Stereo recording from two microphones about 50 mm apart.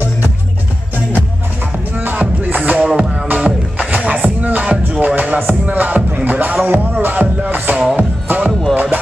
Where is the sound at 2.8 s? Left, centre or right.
Right.